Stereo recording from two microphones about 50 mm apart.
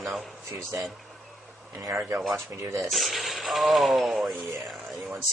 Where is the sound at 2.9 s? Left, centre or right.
Centre.